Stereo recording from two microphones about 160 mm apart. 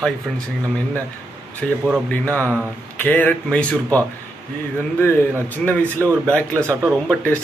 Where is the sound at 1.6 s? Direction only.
5° left (ahead or behind).